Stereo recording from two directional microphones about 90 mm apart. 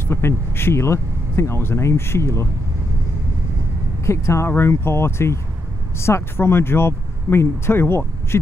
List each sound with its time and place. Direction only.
0.1 s speech: 25° left (ahead or behind)
4.0 s speech: 30° left (ahead or behind)